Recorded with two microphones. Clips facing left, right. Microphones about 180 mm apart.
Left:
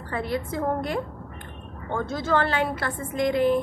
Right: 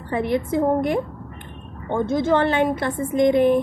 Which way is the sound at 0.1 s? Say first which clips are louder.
Right 7 dB; 20° right (ahead or behind).